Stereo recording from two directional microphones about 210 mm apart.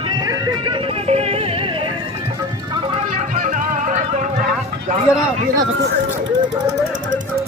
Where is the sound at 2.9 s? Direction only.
35° right (ahead or behind).